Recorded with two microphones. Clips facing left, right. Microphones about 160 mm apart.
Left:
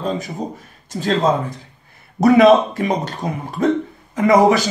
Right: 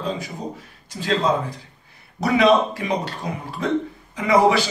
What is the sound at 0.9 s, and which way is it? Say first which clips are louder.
Speech: left 3 dB; 45° left (ahead or behind).